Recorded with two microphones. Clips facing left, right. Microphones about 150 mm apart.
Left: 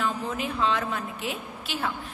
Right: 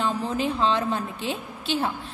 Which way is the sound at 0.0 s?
30° right (ahead or behind).